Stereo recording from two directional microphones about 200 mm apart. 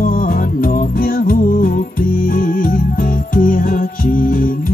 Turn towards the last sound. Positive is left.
turn(degrees=45)  # may be behind; listen again after turning